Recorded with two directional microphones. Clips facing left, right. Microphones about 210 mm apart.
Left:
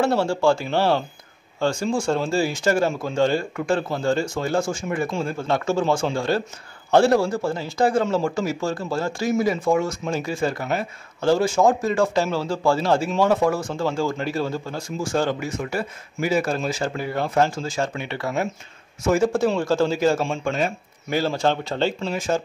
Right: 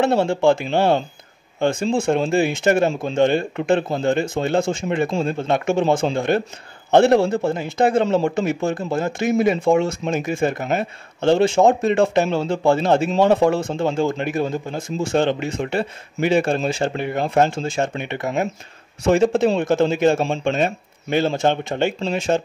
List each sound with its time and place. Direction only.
0.0 s speech: 20° right (ahead or behind)